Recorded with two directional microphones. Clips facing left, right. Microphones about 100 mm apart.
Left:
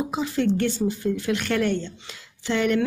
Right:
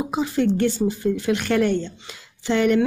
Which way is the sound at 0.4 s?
15° right (ahead or behind).